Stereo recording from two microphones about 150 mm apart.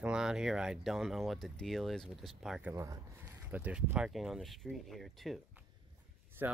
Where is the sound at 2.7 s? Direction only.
20° right (ahead or behind).